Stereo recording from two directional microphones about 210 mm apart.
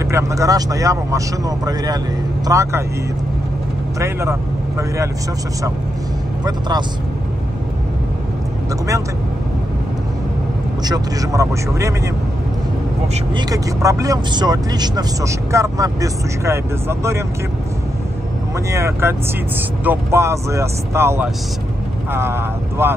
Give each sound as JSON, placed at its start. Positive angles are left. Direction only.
{"t": 0.1, "sound": "speech", "side_deg": -15}
{"t": 2.4, "sound": "speech", "side_deg": -15}
{"t": 4.0, "sound": "speech", "side_deg": -15}
{"t": 10.8, "sound": "speech", "side_deg": -15}
{"t": 13.4, "sound": "speech", "side_deg": -15}
{"t": 18.7, "sound": "speech", "side_deg": -15}